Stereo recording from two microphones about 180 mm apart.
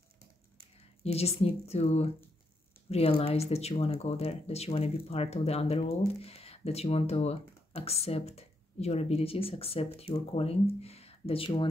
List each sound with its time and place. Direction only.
1.0 s speech: 35° left (ahead or behind)